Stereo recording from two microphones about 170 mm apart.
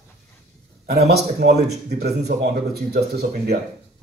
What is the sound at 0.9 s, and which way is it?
A man's voice, 70° right (ahead or behind).